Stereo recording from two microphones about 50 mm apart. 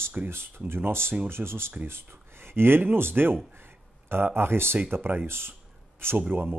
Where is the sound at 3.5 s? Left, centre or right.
Right.